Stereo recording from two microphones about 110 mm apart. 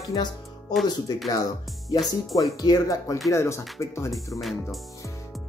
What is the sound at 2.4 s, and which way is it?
Speech, 35° left (ahead or behind).